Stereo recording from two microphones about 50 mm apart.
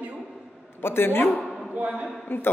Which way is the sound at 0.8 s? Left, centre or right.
Left.